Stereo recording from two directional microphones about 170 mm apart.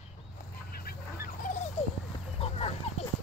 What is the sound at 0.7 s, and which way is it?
Dog, 60° left (ahead or behind).